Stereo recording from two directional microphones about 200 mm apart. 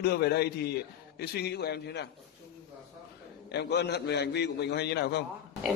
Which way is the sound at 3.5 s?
55° left (ahead or behind).